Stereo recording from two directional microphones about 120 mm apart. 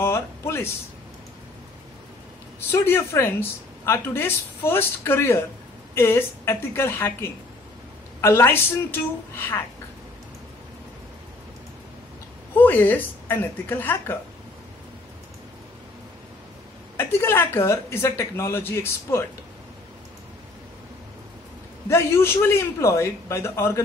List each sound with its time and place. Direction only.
0.0 s speech: 20° left (ahead or behind)
2.7 s speech: 20° left (ahead or behind)
12.5 s speech: 15° left (ahead or behind)
16.9 s speech: 20° left (ahead or behind)
21.8 s speech: 20° left (ahead or behind)